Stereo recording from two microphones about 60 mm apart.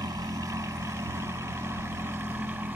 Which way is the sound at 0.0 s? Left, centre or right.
Right.